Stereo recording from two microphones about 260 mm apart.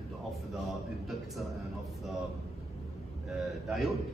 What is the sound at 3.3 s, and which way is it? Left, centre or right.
Speech, centre.